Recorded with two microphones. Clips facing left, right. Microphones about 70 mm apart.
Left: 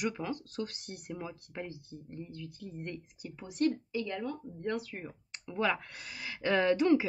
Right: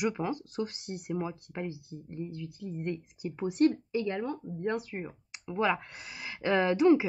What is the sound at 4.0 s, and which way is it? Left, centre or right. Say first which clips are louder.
Speech: right 4 dB; right.